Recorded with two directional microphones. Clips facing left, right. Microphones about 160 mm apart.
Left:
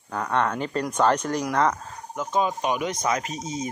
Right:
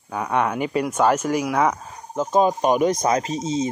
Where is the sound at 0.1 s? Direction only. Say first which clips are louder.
Right 2 dB; 10° right (ahead or behind).